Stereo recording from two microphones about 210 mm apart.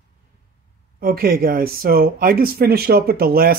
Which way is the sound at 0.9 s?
45° right (ahead or behind).